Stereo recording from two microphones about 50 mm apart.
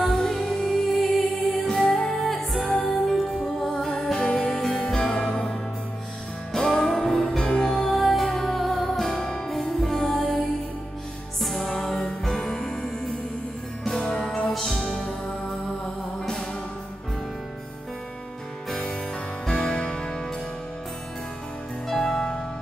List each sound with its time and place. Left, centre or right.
0.0 s music: centre
7.9 s music: centre
11.4 s music: centre
19.4 s music: centre
21.8 s music: centre